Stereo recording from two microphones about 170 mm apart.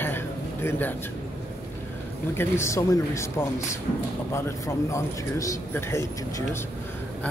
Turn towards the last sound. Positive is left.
turn(degrees=15)  # may be behind; listen again after turning